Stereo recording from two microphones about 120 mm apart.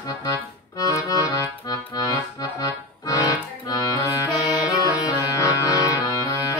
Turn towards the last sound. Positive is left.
turn(degrees=30)  # may be behind; listen again after turning